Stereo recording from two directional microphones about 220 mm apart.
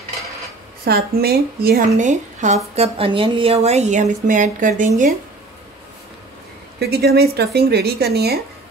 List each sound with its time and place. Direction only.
0.8 s a woman's voice: 45° right (ahead or behind)
6.8 s speech: 45° right (ahead or behind)